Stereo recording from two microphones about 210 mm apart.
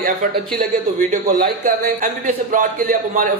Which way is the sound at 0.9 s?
40° right (ahead or behind).